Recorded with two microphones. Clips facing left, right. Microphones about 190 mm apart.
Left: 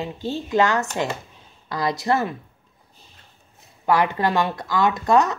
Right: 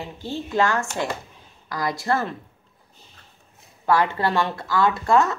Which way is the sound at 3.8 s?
20° left (ahead or behind).